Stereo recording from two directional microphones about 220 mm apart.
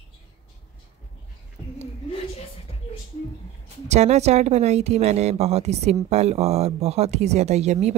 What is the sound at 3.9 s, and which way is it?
Speech, 30° right (ahead or behind).